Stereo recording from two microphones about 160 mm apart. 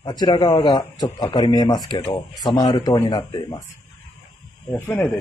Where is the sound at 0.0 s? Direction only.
25° left (ahead or behind).